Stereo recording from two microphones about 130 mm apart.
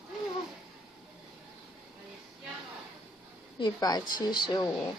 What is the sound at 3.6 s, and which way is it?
Speech, 30° left (ahead or behind).